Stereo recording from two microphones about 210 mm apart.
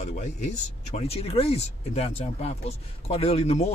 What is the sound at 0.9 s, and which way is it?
Speech, 30° left (ahead or behind).